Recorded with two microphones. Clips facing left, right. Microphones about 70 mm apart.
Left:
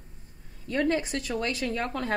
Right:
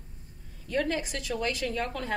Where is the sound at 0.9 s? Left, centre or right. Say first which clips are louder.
Left 4 dB; left.